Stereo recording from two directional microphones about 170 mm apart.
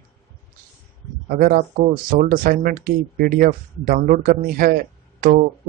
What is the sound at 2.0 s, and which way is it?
Speech, 55° right (ahead or behind).